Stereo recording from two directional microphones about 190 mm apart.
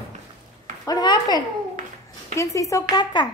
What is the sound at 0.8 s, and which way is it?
Speech, 20° left (ahead or behind).